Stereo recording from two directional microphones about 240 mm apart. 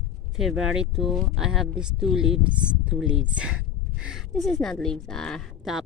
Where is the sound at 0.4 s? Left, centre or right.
Centre.